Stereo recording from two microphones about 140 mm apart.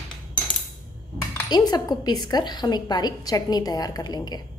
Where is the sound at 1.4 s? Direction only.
30° left (ahead or behind).